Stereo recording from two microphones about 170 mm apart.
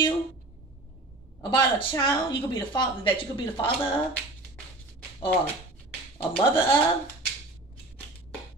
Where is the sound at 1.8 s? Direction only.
30° left (ahead or behind).